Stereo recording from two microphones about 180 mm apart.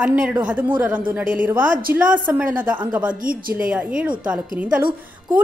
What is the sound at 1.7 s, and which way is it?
Speech, 55° right (ahead or behind).